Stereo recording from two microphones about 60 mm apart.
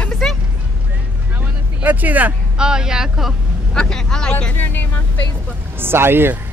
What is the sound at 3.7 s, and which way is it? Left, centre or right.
Speech, centre.